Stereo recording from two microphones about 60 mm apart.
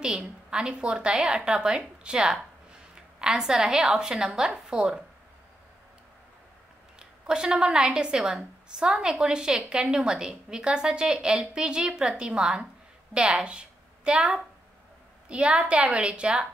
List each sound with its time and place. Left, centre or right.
0.0 s a woman's voice: centre
7.0 s a woman's voice: centre